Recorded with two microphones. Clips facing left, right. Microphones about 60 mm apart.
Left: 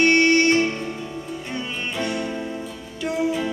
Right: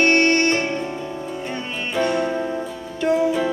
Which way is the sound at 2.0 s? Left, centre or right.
Right.